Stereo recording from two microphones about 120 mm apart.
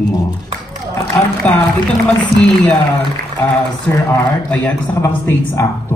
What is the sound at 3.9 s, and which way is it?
A man's voice, 20° left (ahead or behind).